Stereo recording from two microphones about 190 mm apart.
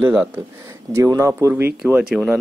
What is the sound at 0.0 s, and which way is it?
A man's voice, 10° right (ahead or behind).